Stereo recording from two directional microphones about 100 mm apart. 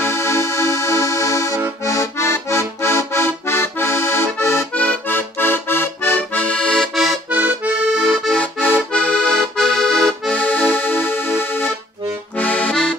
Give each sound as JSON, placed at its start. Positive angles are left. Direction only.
{"t": 0.0, "sound": "music", "side_deg": 30}
{"t": 1.9, "sound": "accordion", "side_deg": 30}
{"t": 7.2, "sound": "accordion", "side_deg": -15}
{"t": 8.4, "sound": "accordion", "side_deg": 15}